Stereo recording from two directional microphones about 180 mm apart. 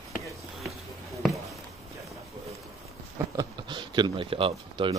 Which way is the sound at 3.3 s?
25° right (ahead or behind).